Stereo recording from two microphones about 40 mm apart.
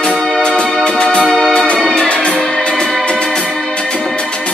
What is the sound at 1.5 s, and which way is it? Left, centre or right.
Music, left.